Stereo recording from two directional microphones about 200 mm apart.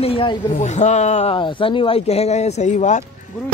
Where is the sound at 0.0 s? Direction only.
25° left (ahead or behind).